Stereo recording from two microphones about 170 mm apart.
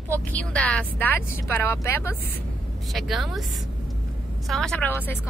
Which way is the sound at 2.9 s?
Centre (ahead or behind).